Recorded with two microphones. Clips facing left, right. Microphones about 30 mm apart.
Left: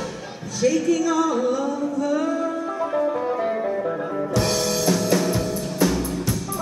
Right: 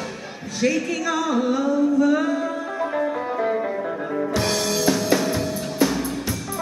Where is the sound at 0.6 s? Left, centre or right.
Right.